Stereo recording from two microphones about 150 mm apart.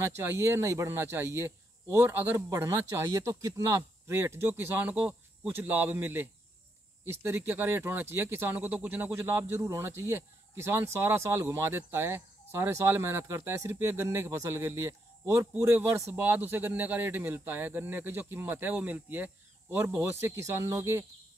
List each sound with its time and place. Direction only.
0.0 s speech: 15° right (ahead or behind)